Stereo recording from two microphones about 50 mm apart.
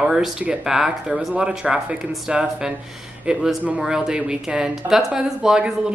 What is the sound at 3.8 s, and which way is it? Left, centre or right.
Speech, centre.